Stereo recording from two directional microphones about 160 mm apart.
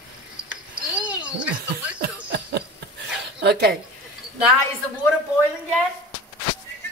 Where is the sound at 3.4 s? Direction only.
90° right.